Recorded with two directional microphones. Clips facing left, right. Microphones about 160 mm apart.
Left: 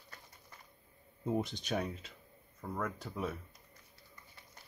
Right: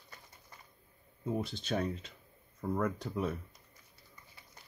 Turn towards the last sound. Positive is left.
turn(degrees=0)  # may be behind; listen again after turning